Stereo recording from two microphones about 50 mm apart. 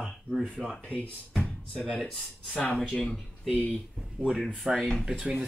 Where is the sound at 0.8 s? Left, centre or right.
Left.